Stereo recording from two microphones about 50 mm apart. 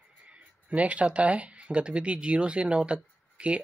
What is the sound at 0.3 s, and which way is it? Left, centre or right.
Speech, right.